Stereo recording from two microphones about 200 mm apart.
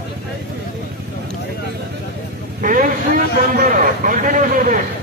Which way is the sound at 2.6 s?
45° right (ahead or behind).